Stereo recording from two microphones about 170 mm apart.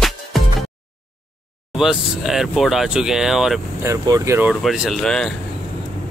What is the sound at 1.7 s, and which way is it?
Speech, centre (ahead or behind).